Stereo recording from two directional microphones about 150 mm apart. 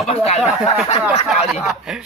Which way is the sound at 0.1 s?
40° left (ahead or behind).